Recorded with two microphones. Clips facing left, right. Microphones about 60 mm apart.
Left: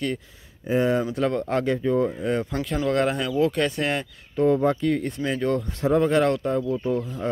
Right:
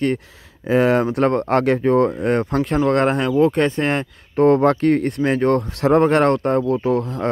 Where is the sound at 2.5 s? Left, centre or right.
Right.